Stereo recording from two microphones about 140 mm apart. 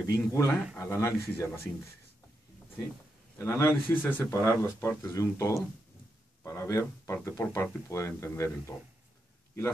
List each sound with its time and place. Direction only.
0.3 s speech: 20° left (ahead or behind)
3.3 s speech: 20° left (ahead or behind)